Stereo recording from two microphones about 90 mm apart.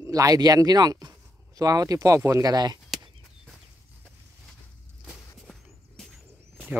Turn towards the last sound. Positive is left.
turn(degrees=5)  # may be behind; listen again after turning